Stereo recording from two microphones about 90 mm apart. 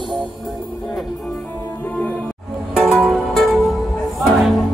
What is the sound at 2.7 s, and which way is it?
Music, centre (ahead or behind).